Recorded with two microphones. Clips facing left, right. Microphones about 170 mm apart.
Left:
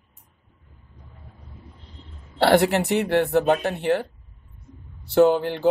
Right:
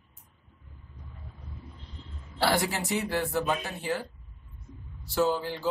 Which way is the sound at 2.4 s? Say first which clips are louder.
Left 9 dB; 60° left (ahead or behind).